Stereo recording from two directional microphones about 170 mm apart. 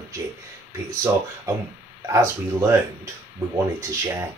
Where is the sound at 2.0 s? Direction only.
20° right (ahead or behind).